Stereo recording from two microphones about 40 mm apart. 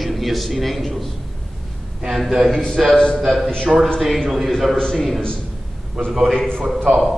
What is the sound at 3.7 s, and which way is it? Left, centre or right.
Speech, right.